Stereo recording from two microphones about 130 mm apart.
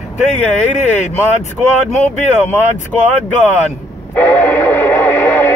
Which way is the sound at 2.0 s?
15° left (ahead or behind).